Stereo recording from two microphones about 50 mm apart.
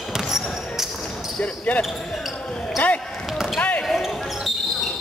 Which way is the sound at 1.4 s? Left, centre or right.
Left.